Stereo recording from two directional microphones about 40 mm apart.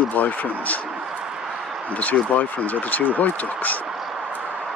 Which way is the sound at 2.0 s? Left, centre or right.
Left.